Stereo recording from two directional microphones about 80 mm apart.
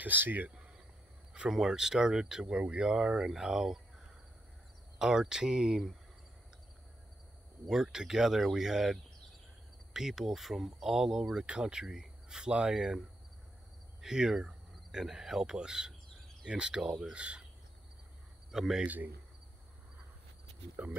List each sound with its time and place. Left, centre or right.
0.0 s speech: right
1.3 s speech: centre
4.9 s speech: centre
7.6 s speech: centre
9.9 s speech: centre
14.0 s speech: centre
18.5 s speech: centre
20.8 s speech: centre